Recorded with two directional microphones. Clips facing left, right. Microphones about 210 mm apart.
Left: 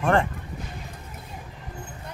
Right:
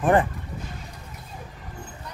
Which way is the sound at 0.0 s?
15° right (ahead or behind).